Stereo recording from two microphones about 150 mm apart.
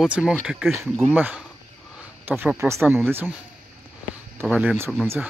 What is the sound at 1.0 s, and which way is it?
A man's voice, 10° right (ahead or behind).